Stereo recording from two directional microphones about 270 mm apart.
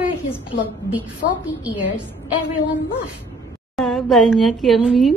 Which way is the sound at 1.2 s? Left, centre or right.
Left.